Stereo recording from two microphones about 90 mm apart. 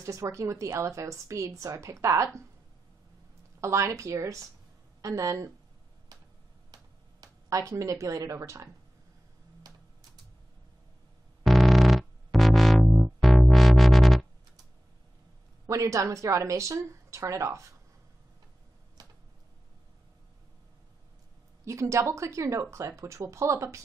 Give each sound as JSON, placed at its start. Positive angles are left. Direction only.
{"t": 0.0, "sound": "a woman's voice", "side_deg": -35}
{"t": 3.6, "sound": "a woman's voice", "side_deg": -30}
{"t": 6.1, "sound": "a sound", "side_deg": -45}
{"t": 9.6, "sound": "typing", "side_deg": -45}
{"t": 11.4, "sound": "music", "side_deg": 0}
{"t": 15.6, "sound": "a woman's voice", "side_deg": -35}
{"t": 19.0, "sound": "a sound", "side_deg": -45}
{"t": 21.6, "sound": "a woman's voice", "side_deg": -35}